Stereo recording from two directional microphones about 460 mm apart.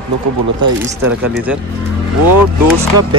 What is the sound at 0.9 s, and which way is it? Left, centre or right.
Speech, centre.